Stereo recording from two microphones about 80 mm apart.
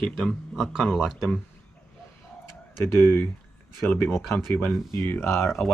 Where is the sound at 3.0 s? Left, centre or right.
Left.